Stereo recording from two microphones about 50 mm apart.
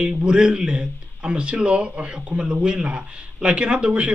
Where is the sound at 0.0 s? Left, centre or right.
Centre.